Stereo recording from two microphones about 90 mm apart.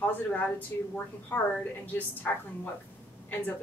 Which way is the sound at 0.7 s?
25° left (ahead or behind).